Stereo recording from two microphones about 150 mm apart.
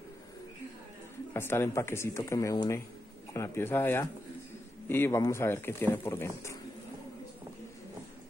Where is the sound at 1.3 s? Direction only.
15° left (ahead or behind).